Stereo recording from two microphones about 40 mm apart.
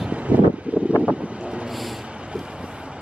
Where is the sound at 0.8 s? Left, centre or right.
Right.